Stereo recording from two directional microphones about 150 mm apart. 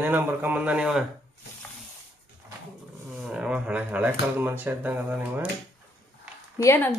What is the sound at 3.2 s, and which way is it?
Speech, 5° right (ahead or behind).